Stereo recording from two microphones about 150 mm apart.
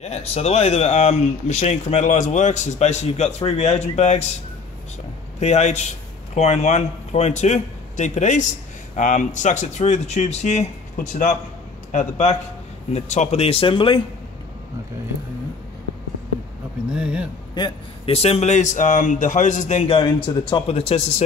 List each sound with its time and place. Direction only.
0.0 s speech: 45° left (ahead or behind)
5.4 s a man's voice: 50° left (ahead or behind); by 14.0 s 35° left (ahead or behind)
16.9 s speech: 5° right (ahead or behind)
17.6 s speech: 35° left (ahead or behind)
20.0 s speech: 30° left (ahead or behind)